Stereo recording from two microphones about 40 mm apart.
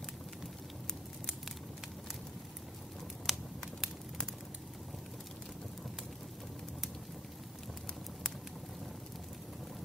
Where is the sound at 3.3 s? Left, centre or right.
Centre.